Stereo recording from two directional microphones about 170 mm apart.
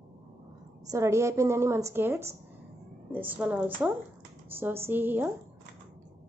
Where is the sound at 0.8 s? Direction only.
15° right (ahead or behind).